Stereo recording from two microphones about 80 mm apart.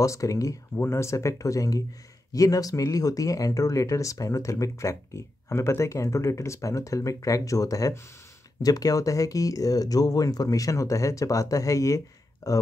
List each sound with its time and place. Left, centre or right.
0.0 s speech: left